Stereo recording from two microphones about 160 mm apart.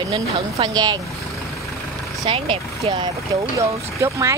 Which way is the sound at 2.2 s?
35° right (ahead or behind).